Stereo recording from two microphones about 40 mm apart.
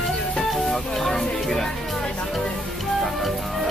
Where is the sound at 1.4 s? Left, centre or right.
Centre.